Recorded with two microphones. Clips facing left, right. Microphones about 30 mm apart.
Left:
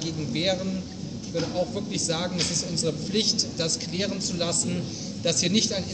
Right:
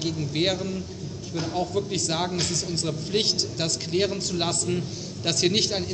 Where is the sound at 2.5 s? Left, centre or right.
Right.